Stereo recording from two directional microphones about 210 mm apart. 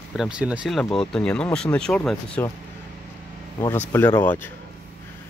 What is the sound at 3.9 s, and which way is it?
Speech, 10° left (ahead or behind).